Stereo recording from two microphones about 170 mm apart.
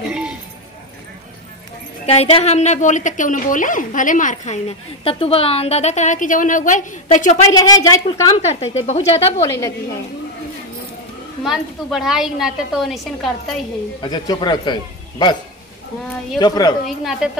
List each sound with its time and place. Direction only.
0.0 s a sound: 5° right (ahead or behind)
2.0 s a woman's voice: 35° left (ahead or behind)
7.4 s a man's voice: 20° left (ahead or behind)
8.4 s a woman's voice: 40° left (ahead or behind)
9.4 s a woman's voice: 15° left (ahead or behind)
11.4 s a woman's voice: centre (ahead or behind)
14.0 s a man's voice: 25° left (ahead or behind)
16.3 s a man's voice: 25° left (ahead or behind)
16.8 s a woman's voice: centre (ahead or behind)